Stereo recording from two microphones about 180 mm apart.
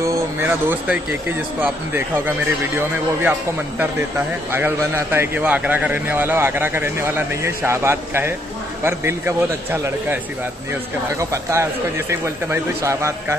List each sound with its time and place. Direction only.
0.0 s a sound: 10° right (ahead or behind)
1.6 s a man's voice: 10° right (ahead or behind)
4.5 s a man's voice: 10° right (ahead or behind)